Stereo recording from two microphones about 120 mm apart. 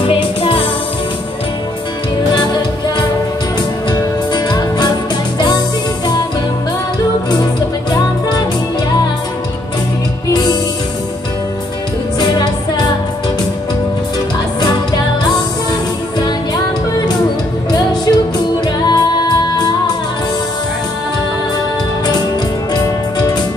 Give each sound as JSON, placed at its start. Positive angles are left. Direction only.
{"t": 0.0, "sound": "music", "side_deg": 50}
{"t": 3.9, "sound": "music", "side_deg": 35}
{"t": 10.3, "sound": "music", "side_deg": 35}
{"t": 12.2, "sound": "music", "side_deg": 35}
{"t": 17.6, "sound": "music", "side_deg": 35}